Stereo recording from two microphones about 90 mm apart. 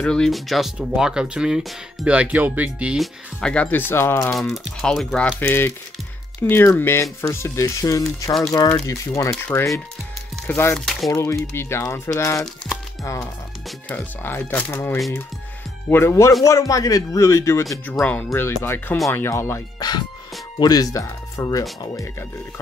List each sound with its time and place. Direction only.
0.0 s speech: 5° left (ahead or behind)
2.0 s speech: 15° right (ahead or behind)
3.0 s speech: 5° left (ahead or behind); by 4.3 s 30° left (ahead or behind)
4.3 s speech: centre (ahead or behind)
6.4 s speech: 30° left (ahead or behind)
10.7 s speech: 5° left (ahead or behind)
11.1 s speech: 35° left (ahead or behind)
13.8 s speech: 20° left (ahead or behind)
18.0 s speech: centre (ahead or behind)
18.3 s speech: 25° left (ahead or behind)
19.8 s speech: 50° left (ahead or behind)